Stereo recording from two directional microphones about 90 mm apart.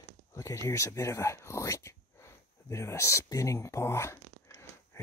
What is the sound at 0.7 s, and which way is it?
Speech, 35° left (ahead or behind).